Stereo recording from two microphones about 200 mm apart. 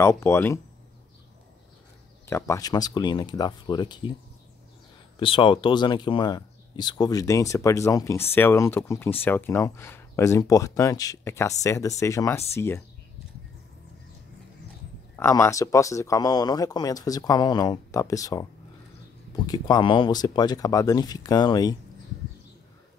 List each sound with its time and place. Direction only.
0.0 s speech: 15° left (ahead or behind)
2.2 s speech: 15° left (ahead or behind)
5.2 s speech: 25° left (ahead or behind)
15.1 s speech: 15° left (ahead or behind)